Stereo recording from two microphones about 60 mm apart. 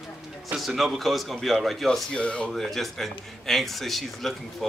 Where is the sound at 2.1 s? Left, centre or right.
Centre.